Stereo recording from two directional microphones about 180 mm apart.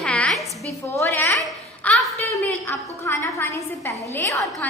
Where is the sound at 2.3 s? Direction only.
15° left (ahead or behind).